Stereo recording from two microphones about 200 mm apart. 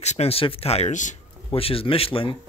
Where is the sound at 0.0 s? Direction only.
35° left (ahead or behind).